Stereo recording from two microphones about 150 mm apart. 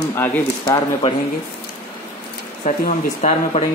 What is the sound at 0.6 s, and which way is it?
Speech, 35° left (ahead or behind).